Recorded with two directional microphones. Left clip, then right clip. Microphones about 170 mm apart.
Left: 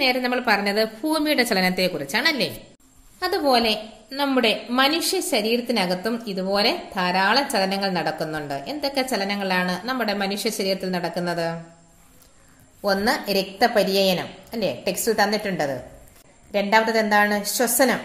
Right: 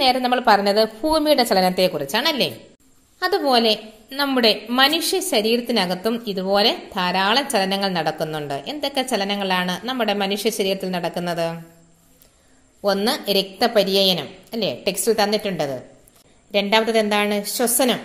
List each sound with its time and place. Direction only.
0.0 s a woman's voice: 25° right (ahead or behind)
12.8 s a woman's voice: 20° right (ahead or behind)
17.1 s a woman's voice: 20° right (ahead or behind)